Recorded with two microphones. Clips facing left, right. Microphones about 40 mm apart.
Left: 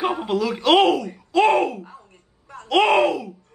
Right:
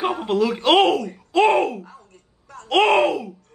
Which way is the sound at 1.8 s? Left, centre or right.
Centre.